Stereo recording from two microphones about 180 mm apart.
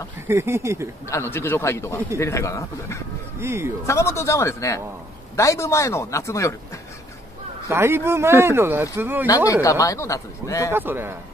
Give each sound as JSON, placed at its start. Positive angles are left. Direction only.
{"t": 0.3, "sound": "speech", "side_deg": -15}
{"t": 1.1, "sound": "speech", "side_deg": 15}
{"t": 3.3, "sound": "speech", "side_deg": -15}
{"t": 3.8, "sound": "speech", "side_deg": 15}
{"t": 7.6, "sound": "speech", "side_deg": -15}
{"t": 9.5, "sound": "speech", "side_deg": 20}
{"t": 10.7, "sound": "speech", "side_deg": -10}